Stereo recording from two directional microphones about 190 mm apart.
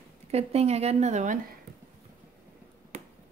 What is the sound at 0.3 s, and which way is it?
Speech, 35° right (ahead or behind).